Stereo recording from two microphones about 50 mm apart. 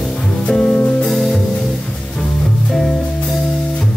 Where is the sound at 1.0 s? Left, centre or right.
Centre.